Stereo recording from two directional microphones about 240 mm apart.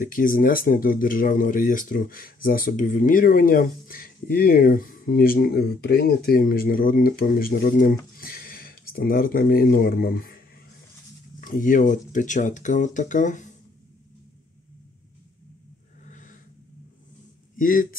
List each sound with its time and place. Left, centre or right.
0.0 s speech: left
11.4 s speech: left
16.1 s a sound: left
17.6 s speech: left